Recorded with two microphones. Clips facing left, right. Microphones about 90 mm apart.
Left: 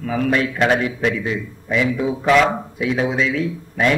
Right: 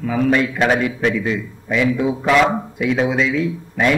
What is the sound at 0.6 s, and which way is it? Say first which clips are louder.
A man's voice: right 1 dB; 5° right (ahead or behind).